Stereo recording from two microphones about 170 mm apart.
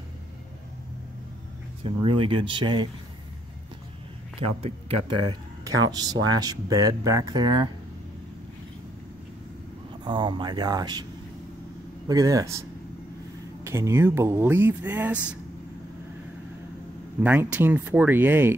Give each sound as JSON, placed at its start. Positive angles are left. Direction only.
{"t": 1.8, "sound": "speech", "side_deg": -30}
{"t": 4.4, "sound": "speech", "side_deg": -35}
{"t": 10.0, "sound": "speech", "side_deg": -25}
{"t": 12.1, "sound": "speech", "side_deg": -20}
{"t": 13.7, "sound": "speech", "side_deg": -15}
{"t": 17.2, "sound": "speech", "side_deg": -10}